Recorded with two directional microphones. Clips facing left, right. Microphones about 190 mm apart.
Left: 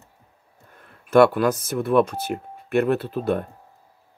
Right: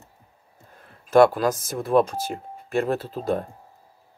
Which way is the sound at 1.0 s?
65° left (ahead or behind).